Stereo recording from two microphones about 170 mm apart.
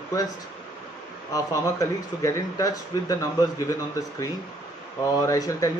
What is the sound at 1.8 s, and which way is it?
Speech, 20° left (ahead or behind).